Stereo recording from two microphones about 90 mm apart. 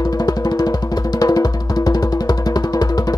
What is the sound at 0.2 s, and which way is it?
Music, 45° left (ahead or behind).